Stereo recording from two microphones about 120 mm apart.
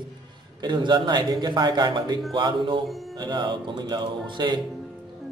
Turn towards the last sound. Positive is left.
turn(degrees=-40)  # may be behind; listen again after turning